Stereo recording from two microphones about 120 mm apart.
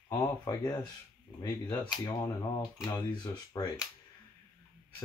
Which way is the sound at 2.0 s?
35° left (ahead or behind).